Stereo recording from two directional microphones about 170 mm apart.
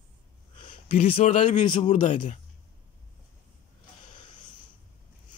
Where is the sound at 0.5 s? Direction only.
30° left (ahead or behind).